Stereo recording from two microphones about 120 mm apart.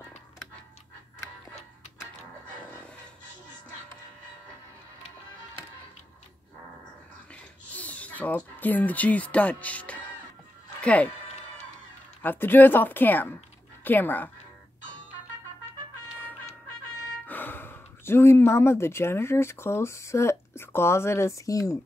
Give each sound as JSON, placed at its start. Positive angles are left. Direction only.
{"t": 7.7, "sound": "speech", "side_deg": 10}
{"t": 12.2, "sound": "speech", "side_deg": 15}
{"t": 17.3, "sound": "speech", "side_deg": 15}